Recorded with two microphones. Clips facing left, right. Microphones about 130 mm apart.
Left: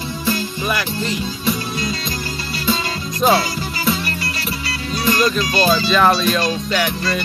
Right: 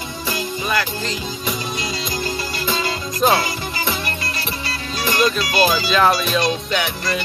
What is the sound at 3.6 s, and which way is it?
Music, 25° right (ahead or behind).